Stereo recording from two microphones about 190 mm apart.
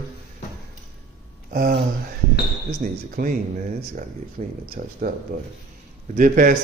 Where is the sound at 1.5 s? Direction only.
50° right (ahead or behind).